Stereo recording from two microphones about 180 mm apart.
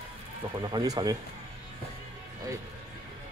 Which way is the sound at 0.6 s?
25° right (ahead or behind).